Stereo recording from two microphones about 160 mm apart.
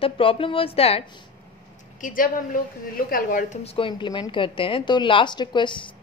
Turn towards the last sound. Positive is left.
turn(degrees=30)  # may be behind; listen again after turning